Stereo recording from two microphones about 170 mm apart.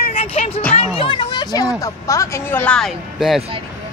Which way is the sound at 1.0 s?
25° left (ahead or behind).